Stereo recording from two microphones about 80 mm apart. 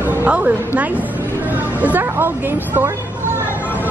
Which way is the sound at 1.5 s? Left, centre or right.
Right.